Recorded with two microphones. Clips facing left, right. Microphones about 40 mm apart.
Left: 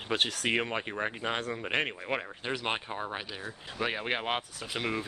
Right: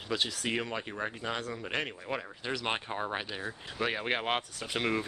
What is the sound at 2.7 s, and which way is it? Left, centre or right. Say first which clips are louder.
Speech: even; centre.